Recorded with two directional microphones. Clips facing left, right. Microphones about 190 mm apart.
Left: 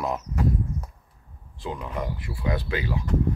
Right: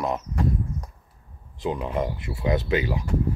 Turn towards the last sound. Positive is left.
turn(degrees=-15)  # may be behind; listen again after turning